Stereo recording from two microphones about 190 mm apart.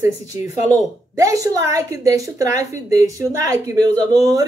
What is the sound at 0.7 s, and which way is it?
A woman's voice, 15° right (ahead or behind).